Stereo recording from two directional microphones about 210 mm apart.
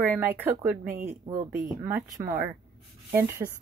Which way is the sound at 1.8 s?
10° right (ahead or behind).